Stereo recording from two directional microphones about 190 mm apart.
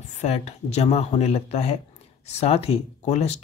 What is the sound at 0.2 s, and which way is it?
Speech, 35° left (ahead or behind).